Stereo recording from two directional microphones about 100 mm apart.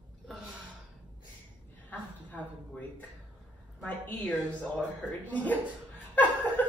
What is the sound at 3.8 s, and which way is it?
A woman's voice, 10° left (ahead or behind).